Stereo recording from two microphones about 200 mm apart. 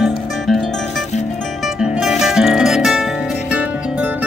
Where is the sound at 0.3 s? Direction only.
Centre (ahead or behind).